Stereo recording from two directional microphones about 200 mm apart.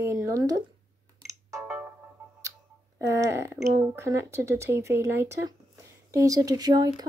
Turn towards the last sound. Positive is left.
turn(degrees=-20)  # may be behind; listen again after turning